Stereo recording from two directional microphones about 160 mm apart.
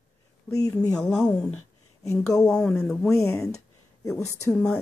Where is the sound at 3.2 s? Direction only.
20° left (ahead or behind).